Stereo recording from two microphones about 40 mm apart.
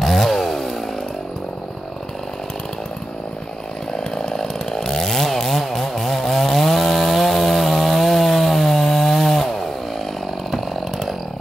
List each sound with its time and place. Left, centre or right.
0.0 s chainsaw: centre
4.3 s chainsaw: centre